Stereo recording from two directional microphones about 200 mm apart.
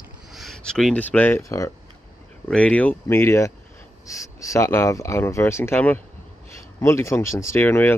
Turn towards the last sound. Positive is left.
turn(degrees=10)  # may be behind; listen again after turning